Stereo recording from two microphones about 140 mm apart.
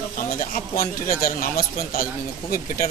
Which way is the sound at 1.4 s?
90° left.